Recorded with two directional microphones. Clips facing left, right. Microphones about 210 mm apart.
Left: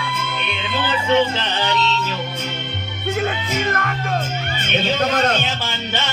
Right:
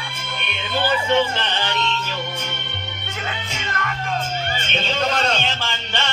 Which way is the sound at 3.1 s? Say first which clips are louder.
Left 8 dB; 50° left (ahead or behind).